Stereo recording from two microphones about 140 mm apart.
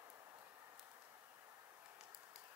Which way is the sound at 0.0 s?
25° right (ahead or behind).